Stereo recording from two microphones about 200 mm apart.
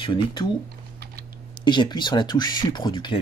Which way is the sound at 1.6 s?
25° left (ahead or behind).